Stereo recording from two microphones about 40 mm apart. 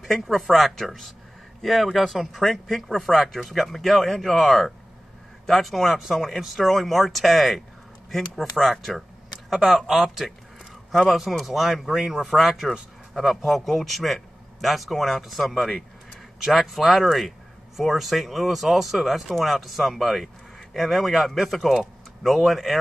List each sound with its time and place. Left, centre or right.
0.0 s a man's voice: centre
9.5 s a man's voice: centre
12.4 s a man's voice: centre